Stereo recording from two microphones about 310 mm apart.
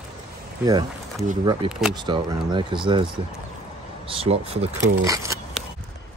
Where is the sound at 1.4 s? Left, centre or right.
Centre.